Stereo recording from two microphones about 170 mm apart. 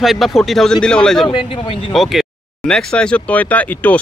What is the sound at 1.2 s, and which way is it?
Speech, 30° left (ahead or behind).